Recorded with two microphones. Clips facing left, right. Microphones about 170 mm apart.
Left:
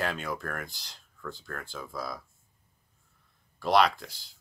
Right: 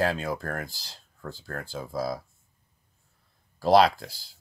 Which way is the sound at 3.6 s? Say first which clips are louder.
Right 5 dB; 35° right (ahead or behind).